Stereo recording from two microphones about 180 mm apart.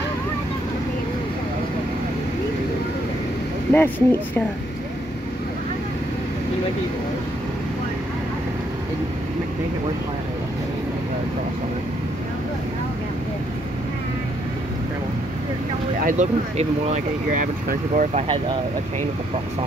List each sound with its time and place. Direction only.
3.7 s speech: 10° left (ahead or behind)
16.0 s speech: 45° right (ahead or behind)